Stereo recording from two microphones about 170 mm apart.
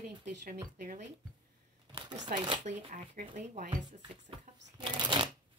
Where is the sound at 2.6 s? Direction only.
45° right (ahead or behind).